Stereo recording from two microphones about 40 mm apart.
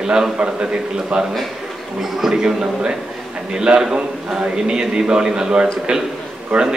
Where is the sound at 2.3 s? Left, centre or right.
Centre.